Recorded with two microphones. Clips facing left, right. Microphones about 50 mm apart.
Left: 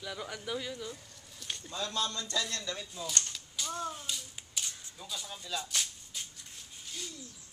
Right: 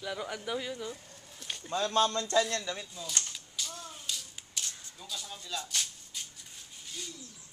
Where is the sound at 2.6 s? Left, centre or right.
Centre.